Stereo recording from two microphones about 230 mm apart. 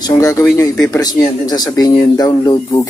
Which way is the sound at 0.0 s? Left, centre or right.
Centre.